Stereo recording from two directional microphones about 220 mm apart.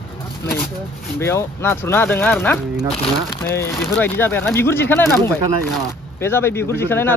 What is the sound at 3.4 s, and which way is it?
Speech, 10° left (ahead or behind).